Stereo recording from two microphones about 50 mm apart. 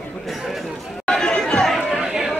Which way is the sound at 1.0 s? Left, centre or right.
Centre.